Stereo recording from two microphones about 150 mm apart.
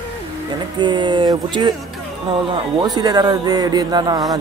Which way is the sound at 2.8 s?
25° right (ahead or behind).